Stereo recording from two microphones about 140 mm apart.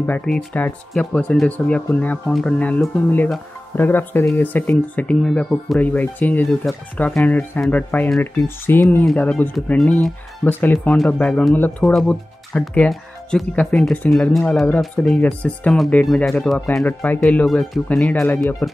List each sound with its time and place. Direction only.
0.0 s speech: 10° left (ahead or behind)